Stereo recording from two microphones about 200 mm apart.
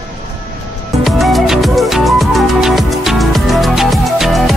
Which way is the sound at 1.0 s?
Centre (ahead or behind).